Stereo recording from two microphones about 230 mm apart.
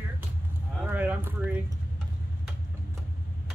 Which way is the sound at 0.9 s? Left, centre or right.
Centre.